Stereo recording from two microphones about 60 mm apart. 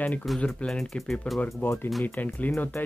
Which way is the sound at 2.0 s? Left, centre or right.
Left.